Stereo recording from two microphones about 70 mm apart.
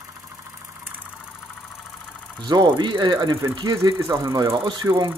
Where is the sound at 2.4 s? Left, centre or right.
Right.